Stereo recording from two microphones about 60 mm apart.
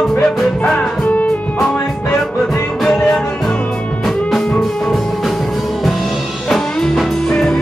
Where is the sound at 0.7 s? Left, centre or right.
Left.